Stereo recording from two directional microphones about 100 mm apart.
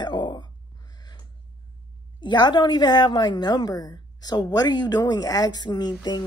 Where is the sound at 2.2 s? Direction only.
45° left (ahead or behind).